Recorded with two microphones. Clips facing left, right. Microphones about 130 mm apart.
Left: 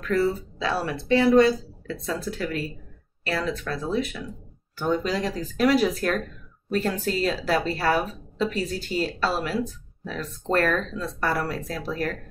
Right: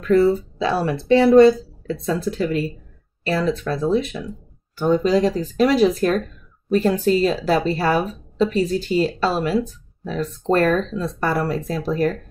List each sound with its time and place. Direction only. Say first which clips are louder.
0.1 s speech: right 8 dB; 25° right (ahead or behind)